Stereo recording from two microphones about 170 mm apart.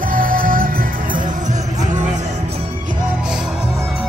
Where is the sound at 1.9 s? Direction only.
45° right (ahead or behind).